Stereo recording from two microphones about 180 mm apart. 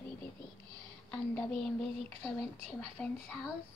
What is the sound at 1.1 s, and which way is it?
Speech, 5° left (ahead or behind).